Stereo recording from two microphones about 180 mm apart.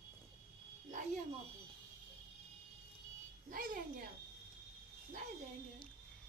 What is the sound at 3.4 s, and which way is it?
Speech, 50° right (ahead or behind).